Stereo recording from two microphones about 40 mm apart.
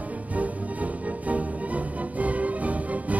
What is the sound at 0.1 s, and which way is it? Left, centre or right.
Music, right.